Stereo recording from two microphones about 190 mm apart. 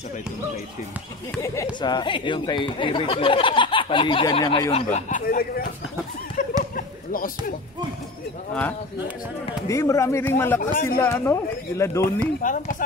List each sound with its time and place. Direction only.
1.4 s speech: 15° left (ahead or behind); by 5.2 s 35° left (ahead or behind)
5.2 s speech: 50° left (ahead or behind)
6.4 s a sound: 45° left (ahead or behind)
9.7 s speech: 15° left (ahead or behind)
12.4 s speech: 45° left (ahead or behind)